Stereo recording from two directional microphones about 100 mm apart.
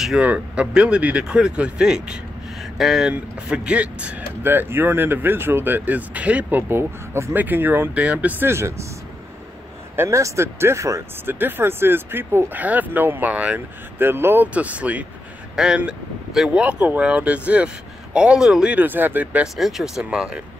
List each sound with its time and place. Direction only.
0.2 s speech: 10° right (ahead or behind); by 8.8 s 25° right (ahead or behind)
9.9 s speech: 30° right (ahead or behind)
19.4 s speech: centre (ahead or behind)